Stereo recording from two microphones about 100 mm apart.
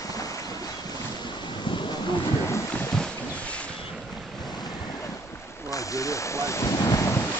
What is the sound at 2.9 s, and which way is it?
Boat, 10° left (ahead or behind).